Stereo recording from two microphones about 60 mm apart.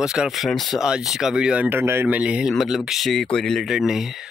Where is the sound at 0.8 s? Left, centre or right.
Centre.